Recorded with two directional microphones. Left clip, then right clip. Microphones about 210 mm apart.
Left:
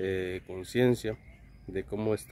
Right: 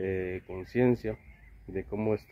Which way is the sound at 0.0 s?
15° left (ahead or behind).